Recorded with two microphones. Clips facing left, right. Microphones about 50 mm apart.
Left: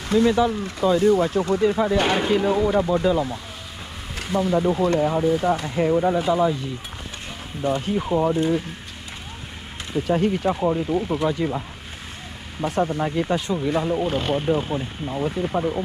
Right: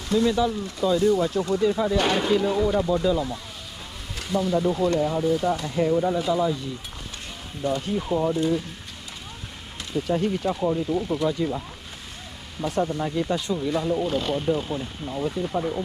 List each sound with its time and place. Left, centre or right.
0.1 s speech: left
2.0 s speech: centre
2.4 s speech: left
4.6 s speech: left
7.6 s speech: left
10.0 s speech: left
11.2 s speech: left
12.6 s speech: left